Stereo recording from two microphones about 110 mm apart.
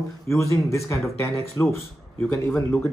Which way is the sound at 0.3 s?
25° left (ahead or behind).